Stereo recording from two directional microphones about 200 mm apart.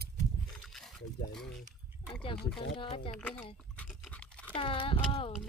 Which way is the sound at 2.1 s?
25° left (ahead or behind).